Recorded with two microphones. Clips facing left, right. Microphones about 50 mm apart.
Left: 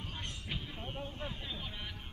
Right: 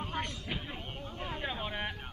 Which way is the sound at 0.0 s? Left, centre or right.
Right.